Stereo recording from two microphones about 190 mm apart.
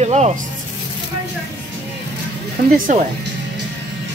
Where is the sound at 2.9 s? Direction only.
40° right (ahead or behind).